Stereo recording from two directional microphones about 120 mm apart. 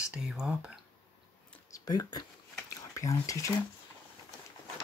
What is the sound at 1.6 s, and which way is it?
Speech, 30° left (ahead or behind).